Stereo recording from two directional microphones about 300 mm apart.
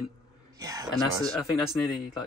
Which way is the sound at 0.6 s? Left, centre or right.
Centre.